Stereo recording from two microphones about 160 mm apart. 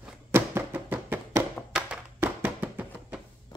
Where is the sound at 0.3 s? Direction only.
15° right (ahead or behind).